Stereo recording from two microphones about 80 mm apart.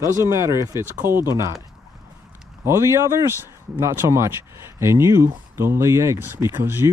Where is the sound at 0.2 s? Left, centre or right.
Right.